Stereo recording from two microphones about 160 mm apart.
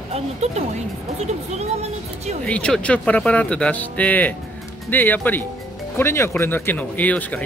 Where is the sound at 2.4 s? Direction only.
5° left (ahead or behind).